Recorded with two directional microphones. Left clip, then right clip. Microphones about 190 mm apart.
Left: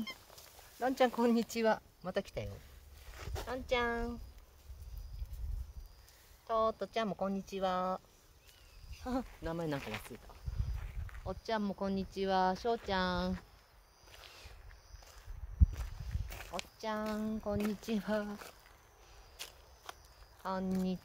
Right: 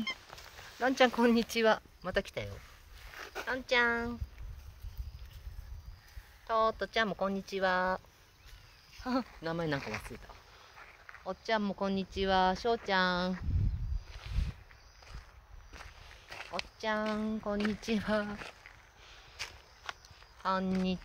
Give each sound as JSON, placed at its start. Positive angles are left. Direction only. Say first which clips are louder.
{"t": 0.7, "sound": "speech", "louder": "right 4 dB", "side_deg": -5}
{"t": 3.2, "sound": "a sound", "louder": "right 6 dB", "side_deg": -20}
{"t": 3.5, "sound": "speech", "louder": "right 5 dB", "side_deg": -10}
{"t": 6.4, "sound": "speech", "louder": "right 3 dB", "side_deg": -20}
{"t": 9.0, "sound": "speech", "louder": "right 4 dB", "side_deg": -25}
{"t": 14.1, "sound": "walk", "louder": "right 4 dB", "side_deg": -25}
{"t": 15.7, "sound": "speech", "louder": "right 3 dB", "side_deg": -35}
{"t": 19.3, "sound": "a sound", "louder": "right 6 dB", "side_deg": -30}
{"t": 20.4, "sound": "speech", "louder": "right 5 dB", "side_deg": -30}